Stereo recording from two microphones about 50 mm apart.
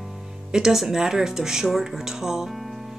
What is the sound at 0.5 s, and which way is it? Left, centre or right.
Speech, centre.